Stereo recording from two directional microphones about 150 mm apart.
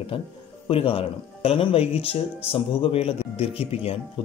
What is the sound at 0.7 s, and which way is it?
Speech, 40° left (ahead or behind).